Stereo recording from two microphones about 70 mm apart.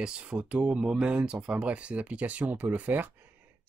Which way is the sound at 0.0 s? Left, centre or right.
Centre.